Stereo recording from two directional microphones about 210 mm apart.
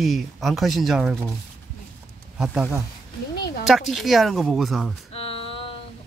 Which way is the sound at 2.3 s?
5° right (ahead or behind).